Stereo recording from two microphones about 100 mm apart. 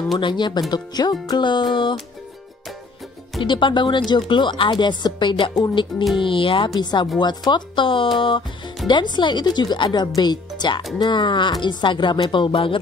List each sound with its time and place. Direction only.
0.2 s speech: 50° left (ahead or behind)
3.4 s speech: 55° left (ahead or behind)
6.8 s speech: 45° left (ahead or behind)